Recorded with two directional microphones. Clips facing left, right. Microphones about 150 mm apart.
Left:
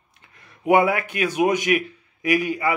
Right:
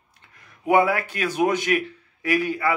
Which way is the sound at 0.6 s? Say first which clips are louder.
Left 1 dB; 20° left (ahead or behind).